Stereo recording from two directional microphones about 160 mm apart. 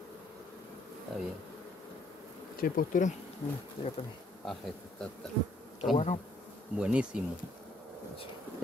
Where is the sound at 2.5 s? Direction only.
65° left (ahead or behind).